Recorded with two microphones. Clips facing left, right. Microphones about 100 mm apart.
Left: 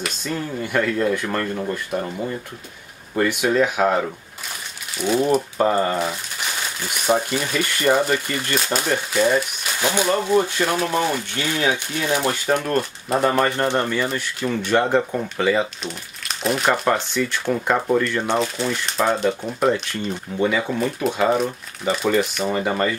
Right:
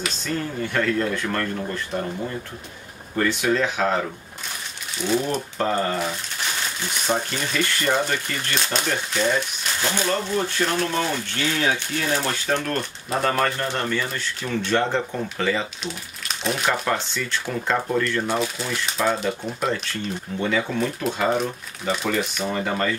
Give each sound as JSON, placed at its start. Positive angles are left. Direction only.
{"t": 0.2, "sound": "speech", "side_deg": 15}
{"t": 3.2, "sound": "speech", "side_deg": 10}
{"t": 5.0, "sound": "speech", "side_deg": 5}
{"t": 12.7, "sound": "speech", "side_deg": 5}
{"t": 13.7, "sound": "speech", "side_deg": 15}
{"t": 16.9, "sound": "speech", "side_deg": 15}
{"t": 18.2, "sound": "speech", "side_deg": -5}
{"t": 19.7, "sound": "speech", "side_deg": 10}